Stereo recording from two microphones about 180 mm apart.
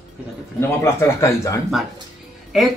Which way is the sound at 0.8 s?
15° left (ahead or behind).